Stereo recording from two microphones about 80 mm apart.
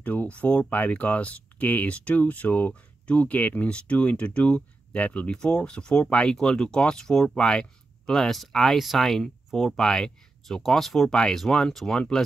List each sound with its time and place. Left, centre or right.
0.0 s speech: centre